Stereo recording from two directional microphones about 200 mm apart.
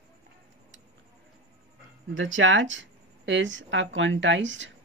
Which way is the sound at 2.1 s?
75° right (ahead or behind).